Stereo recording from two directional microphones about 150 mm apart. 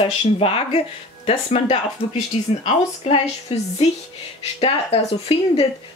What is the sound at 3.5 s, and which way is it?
A woman's voice, 45° left (ahead or behind).